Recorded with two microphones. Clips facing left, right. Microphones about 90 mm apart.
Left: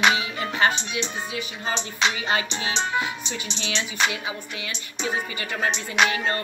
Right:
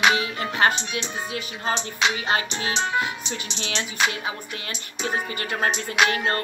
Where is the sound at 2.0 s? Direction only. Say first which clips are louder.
Even; 5° right (ahead or behind).